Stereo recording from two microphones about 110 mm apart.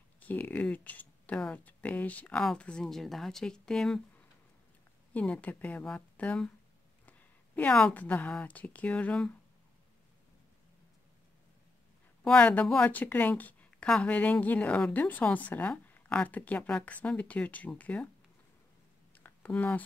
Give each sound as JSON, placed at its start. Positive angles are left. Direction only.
{"t": 0.2, "sound": "a woman's voice", "side_deg": 15}
{"t": 5.1, "sound": "a woman's voice", "side_deg": 15}
{"t": 12.3, "sound": "a woman's voice", "side_deg": 10}
{"t": 19.1, "sound": "a sound", "side_deg": 15}